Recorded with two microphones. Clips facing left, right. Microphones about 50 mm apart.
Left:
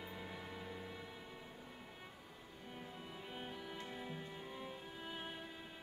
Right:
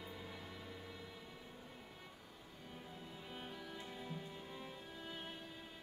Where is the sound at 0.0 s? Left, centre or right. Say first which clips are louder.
Left 2 dB; centre.